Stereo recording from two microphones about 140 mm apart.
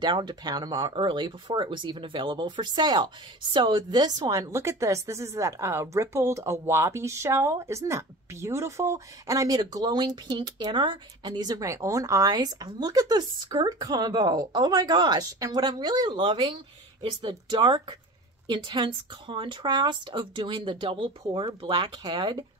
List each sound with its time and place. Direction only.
0.0 s speech: 30° right (ahead or behind)